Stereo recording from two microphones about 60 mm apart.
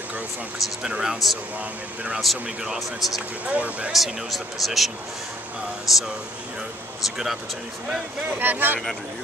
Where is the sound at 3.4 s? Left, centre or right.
Right.